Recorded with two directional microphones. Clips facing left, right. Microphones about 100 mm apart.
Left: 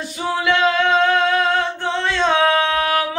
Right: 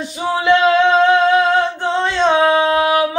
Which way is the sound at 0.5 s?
25° right (ahead or behind).